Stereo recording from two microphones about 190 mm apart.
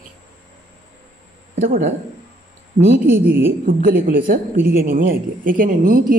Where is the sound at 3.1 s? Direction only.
10° right (ahead or behind).